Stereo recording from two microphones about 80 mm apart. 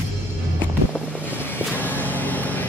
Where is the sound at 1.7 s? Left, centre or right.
Left.